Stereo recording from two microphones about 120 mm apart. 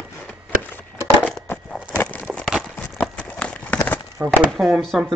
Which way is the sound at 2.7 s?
15° left (ahead or behind).